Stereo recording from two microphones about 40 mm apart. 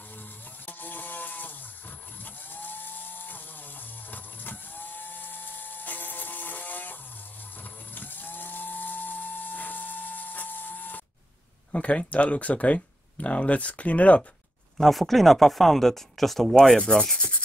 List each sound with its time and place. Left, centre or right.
0.7 s a sound: left
4.1 s dental drill: left
7.6 s a sound: left
11.7 s speech: left
14.8 s speech: centre
16.5 s rub: centre